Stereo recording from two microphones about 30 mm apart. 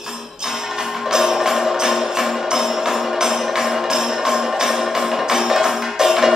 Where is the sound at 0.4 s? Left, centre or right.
Centre.